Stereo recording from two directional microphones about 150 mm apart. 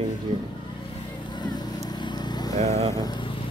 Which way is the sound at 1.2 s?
30° left (ahead or behind).